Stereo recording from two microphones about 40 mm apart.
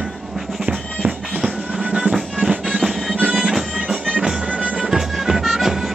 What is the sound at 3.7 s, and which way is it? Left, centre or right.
Music, centre.